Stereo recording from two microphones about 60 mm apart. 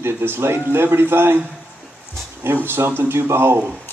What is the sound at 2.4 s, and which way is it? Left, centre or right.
Speech, right.